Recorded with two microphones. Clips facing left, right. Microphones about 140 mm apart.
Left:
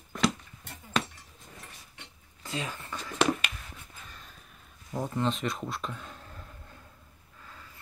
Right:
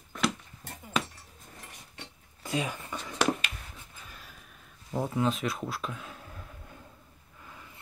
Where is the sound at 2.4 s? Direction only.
15° right (ahead or behind).